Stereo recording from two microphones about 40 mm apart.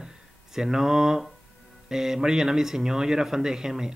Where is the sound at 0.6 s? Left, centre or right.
Centre.